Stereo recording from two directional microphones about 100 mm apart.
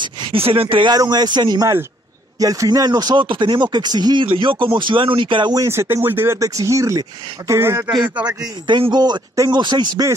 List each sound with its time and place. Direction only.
0.0 s a sound: 50° right (ahead or behind)
0.4 s speech: 65° right (ahead or behind)
0.9 s speech: 40° right (ahead or behind)
2.3 s speech: 35° right (ahead or behind); by 5.5 s 55° right (ahead or behind)
5.5 s speech: 30° right (ahead or behind)
6.3 s speech: 35° right (ahead or behind)
8.0 s a man's voice: 15° right (ahead or behind)
8.6 s speech: 50° right (ahead or behind)